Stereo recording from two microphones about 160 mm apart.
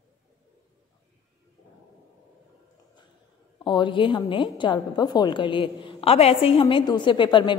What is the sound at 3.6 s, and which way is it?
A woman's voice, 30° left (ahead or behind).